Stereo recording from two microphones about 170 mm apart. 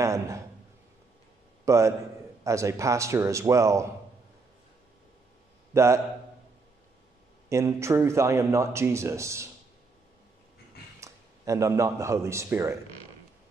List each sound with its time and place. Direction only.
0.0 s a sound: 20° right (ahead or behind)
1.7 s a man's voice: 15° right (ahead or behind)
5.7 s a man's voice: 15° right (ahead or behind)
7.4 s a man's voice: 15° right (ahead or behind)
11.0 s a man's voice: 20° right (ahead or behind)